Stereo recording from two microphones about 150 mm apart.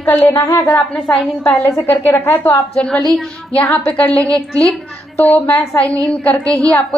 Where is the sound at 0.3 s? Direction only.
20° left (ahead or behind).